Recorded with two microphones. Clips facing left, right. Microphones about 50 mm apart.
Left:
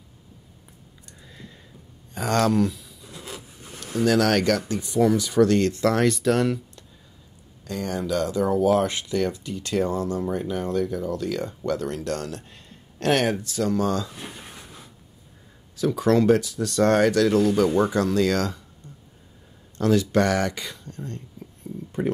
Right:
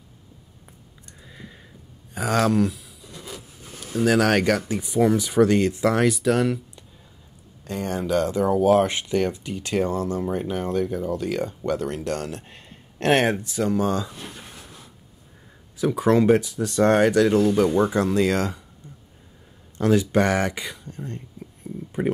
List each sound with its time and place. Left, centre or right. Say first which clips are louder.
1.2 s a sound: right 2 dB; centre
2.1 s speech: right 1 dB; centre
3.1 s a sound: even; centre
4.0 s speech: right 1 dB; centre
7.6 s speech: right 1 dB; right
14.1 s a sound: even; centre
15.7 s speech: right 1 dB; centre
17.6 s speech: right 1 dB; centre
17.9 s speech: right 1 dB; right
19.8 s speech: right 1 dB; centre